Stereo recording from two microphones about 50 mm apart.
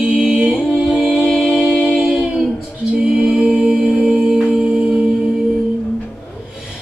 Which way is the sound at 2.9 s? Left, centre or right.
Centre.